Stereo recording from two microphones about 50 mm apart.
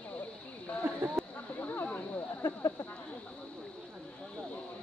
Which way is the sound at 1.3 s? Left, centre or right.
Left.